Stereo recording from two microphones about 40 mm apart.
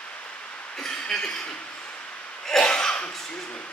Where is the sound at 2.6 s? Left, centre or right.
Left.